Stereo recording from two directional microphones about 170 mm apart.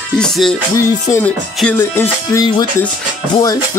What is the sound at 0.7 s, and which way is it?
Music, 15° left (ahead or behind).